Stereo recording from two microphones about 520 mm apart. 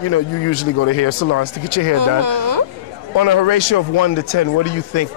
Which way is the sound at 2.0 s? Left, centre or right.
Right.